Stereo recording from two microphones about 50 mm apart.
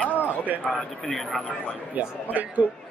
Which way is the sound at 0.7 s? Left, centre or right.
Centre.